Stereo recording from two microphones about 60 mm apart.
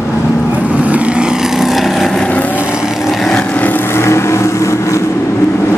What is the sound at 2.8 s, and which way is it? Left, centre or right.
Vehicle, centre.